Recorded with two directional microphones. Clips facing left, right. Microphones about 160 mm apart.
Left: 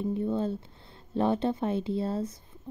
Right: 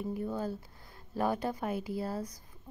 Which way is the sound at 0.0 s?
25° left (ahead or behind).